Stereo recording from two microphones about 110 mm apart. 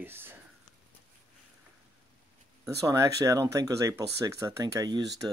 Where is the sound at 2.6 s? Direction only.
30° right (ahead or behind).